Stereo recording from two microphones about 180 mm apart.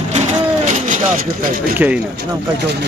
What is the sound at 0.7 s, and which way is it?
Vehicle, 45° right (ahead or behind).